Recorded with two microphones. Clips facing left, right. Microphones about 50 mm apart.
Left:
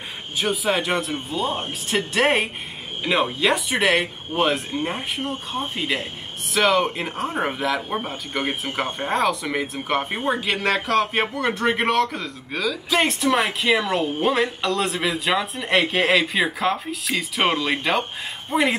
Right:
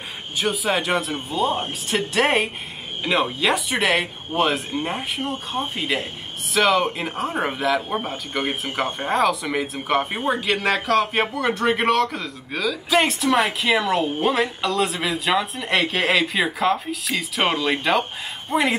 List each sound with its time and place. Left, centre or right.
0.4 s a man's voice: centre